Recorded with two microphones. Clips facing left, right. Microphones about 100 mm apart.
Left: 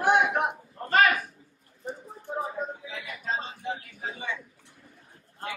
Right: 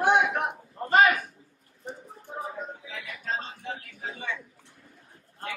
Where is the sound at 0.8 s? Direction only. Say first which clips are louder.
Right 2 dB; 20° right (ahead or behind).